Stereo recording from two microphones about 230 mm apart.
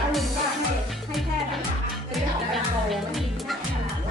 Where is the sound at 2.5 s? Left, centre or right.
Centre.